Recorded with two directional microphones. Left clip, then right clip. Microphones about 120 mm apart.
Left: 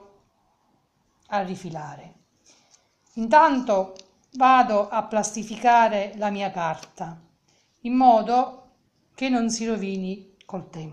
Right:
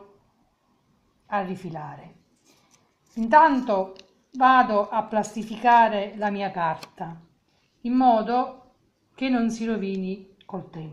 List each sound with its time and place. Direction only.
1.2 s a woman's voice: 10° left (ahead or behind)
3.2 s a woman's voice: 15° left (ahead or behind)
7.8 s a woman's voice: 15° left (ahead or behind)